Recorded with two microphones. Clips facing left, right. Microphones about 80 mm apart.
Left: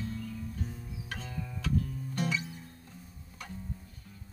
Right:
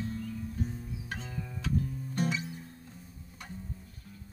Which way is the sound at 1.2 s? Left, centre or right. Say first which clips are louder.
Even; right.